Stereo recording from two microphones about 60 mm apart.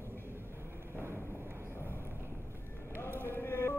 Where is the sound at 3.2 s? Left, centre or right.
Left.